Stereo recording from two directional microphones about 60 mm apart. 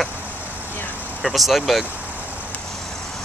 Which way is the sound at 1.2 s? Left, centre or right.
Centre.